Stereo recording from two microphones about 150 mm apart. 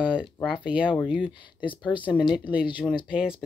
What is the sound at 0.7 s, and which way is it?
Speech, 10° right (ahead or behind).